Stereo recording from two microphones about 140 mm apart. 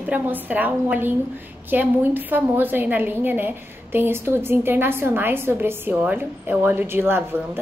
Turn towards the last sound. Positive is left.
turn(degrees=-15)  # may be behind; listen again after turning